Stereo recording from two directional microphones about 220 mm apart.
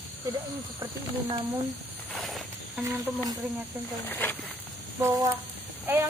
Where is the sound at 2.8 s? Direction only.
15° right (ahead or behind).